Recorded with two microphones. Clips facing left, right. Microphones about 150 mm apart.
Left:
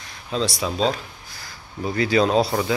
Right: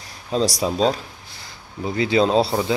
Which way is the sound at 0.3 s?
40° right (ahead or behind).